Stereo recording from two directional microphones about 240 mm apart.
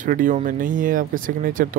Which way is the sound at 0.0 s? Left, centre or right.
Right.